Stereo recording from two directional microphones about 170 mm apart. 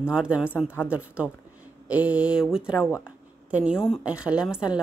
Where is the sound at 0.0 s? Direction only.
5° right (ahead or behind).